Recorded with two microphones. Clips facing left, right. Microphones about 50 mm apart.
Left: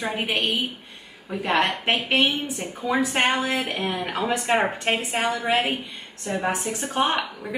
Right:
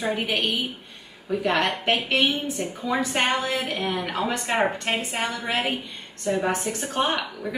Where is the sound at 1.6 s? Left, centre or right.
Left.